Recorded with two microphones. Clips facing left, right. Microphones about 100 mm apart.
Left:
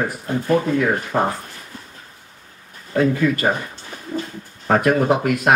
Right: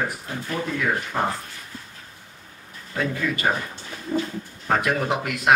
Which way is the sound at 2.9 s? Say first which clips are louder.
Left 8 dB; 45° left (ahead or behind).